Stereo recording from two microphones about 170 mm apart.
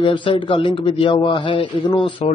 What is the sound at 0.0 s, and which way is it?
A man's voice, 30° left (ahead or behind).